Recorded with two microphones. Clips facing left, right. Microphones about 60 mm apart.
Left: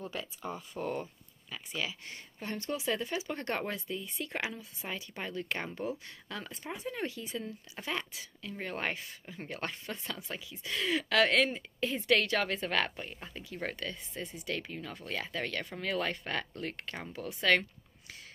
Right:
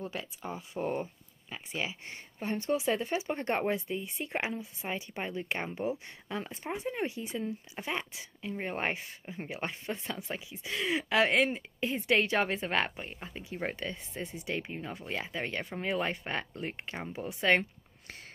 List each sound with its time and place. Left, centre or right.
0.1 s speech: centre